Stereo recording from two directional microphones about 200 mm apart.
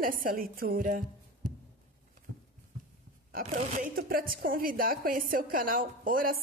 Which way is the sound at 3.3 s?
40° right (ahead or behind).